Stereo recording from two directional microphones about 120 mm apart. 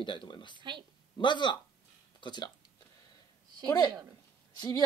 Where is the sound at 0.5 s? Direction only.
40° right (ahead or behind).